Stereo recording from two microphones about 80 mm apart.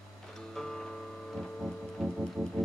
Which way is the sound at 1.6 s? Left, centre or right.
Centre.